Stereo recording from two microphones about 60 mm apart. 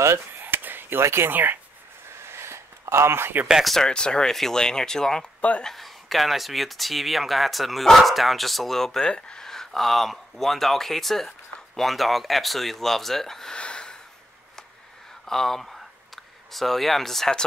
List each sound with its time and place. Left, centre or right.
0.4 s chop: right
1.0 s speech: right
2.0 s a sound: right
3.8 s speech: centre
15.2 s speech: centre